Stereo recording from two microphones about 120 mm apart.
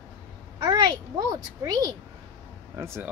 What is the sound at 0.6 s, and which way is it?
A child's voice, 35° right (ahead or behind).